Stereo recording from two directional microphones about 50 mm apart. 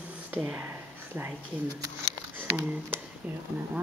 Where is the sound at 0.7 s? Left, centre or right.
Right.